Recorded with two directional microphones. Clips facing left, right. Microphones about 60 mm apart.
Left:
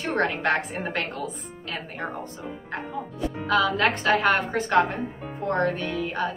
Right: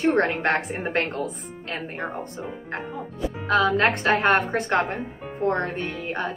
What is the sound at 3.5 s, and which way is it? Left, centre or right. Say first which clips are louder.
A woman's voice: right 2 dB; right.